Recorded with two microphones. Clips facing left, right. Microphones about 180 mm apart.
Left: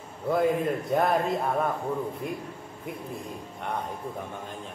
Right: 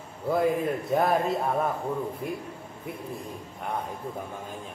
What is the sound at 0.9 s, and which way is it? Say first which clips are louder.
Speech: even; 5° right (ahead or behind).